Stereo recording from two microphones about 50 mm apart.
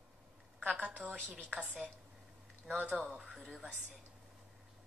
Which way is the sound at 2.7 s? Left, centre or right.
Right.